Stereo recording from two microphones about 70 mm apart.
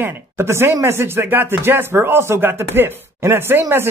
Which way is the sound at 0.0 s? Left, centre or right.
Right.